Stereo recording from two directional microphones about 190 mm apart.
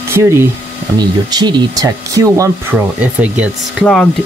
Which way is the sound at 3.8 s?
5° left (ahead or behind).